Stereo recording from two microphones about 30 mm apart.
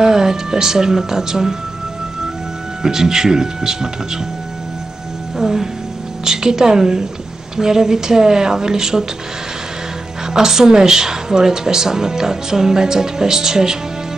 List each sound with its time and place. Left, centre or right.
0.0 s speech: centre
2.8 s speech: centre
5.4 s music: centre
6.2 s speech: centre
10.3 s speech: centre